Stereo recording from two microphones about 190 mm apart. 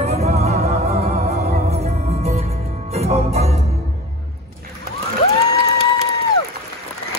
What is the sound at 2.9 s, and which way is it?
Music, 35° right (ahead or behind).